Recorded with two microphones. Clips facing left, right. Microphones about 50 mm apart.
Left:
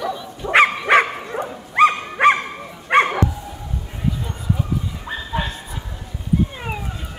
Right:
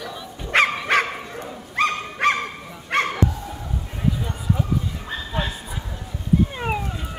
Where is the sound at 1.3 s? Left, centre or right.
Left.